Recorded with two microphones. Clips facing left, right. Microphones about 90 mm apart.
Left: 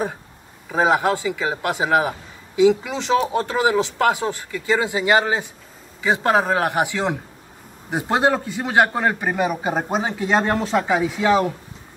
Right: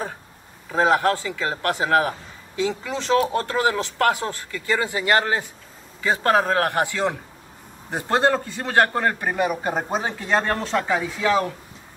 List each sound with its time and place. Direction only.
0.7 s speech: 15° left (ahead or behind)